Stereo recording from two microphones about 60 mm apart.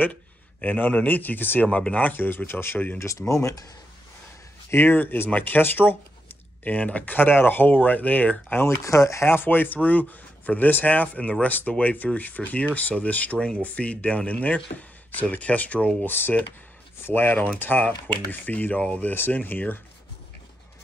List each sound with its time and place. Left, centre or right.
0.0 s speech: left
3.0 s speech: left
4.6 s speech: left
6.6 s speech: left
8.6 s speech: left
9.2 s speech: left
16.0 s speech: left